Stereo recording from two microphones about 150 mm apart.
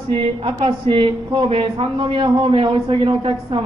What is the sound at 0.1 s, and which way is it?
Speech, 40° right (ahead or behind).